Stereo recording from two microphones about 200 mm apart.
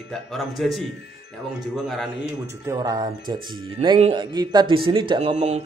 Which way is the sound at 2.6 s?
20° right (ahead or behind).